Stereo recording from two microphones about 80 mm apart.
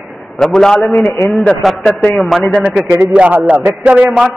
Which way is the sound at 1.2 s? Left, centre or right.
Left.